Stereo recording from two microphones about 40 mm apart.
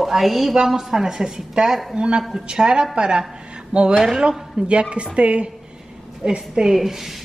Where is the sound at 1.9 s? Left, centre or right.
Right.